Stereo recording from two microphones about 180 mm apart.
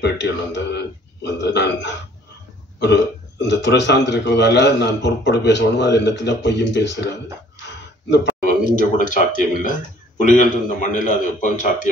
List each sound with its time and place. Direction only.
0.0 s a man's voice: 75° left (ahead or behind)
8.7 s a man's voice: 45° left (ahead or behind)